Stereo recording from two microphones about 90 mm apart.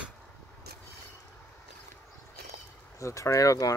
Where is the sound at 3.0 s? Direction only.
35° left (ahead or behind).